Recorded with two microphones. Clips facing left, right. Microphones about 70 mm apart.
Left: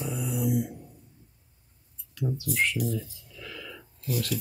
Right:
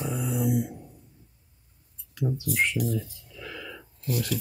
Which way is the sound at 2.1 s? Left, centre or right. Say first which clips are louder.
Right 2 dB; right.